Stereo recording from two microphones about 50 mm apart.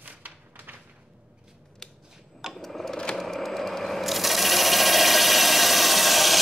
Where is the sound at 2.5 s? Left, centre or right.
Centre.